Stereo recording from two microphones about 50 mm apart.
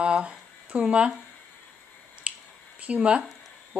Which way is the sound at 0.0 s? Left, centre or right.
Right.